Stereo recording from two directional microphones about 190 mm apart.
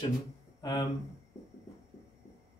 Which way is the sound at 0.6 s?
20° left (ahead or behind).